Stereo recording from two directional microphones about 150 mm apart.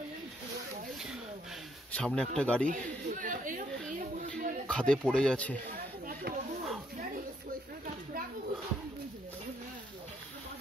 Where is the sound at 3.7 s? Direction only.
5° left (ahead or behind).